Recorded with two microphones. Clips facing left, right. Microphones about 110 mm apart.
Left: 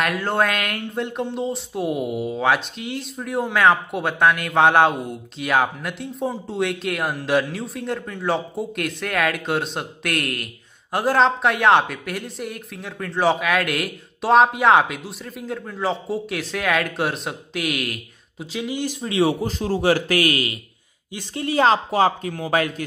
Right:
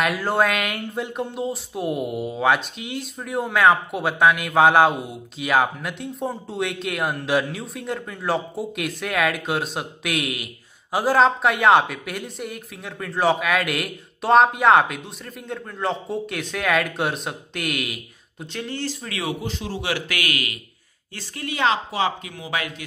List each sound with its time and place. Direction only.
0.0 s speech: 5° right (ahead or behind); by 19.3 s 25° left (ahead or behind)
19.4 s a man's voice: 45° left (ahead or behind)